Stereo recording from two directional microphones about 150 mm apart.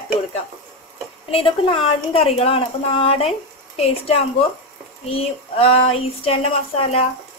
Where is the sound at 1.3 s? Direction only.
40° left (ahead or behind).